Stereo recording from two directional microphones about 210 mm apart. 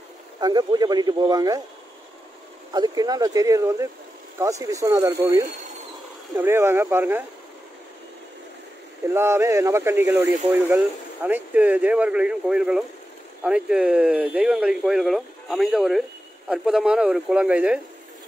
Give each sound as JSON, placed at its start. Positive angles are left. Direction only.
{"t": 0.4, "sound": "speech", "side_deg": -20}
{"t": 2.7, "sound": "speech", "side_deg": -20}
{"t": 9.1, "sound": "speech", "side_deg": -10}